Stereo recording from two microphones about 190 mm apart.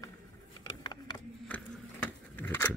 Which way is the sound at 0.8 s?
20° left (ahead or behind).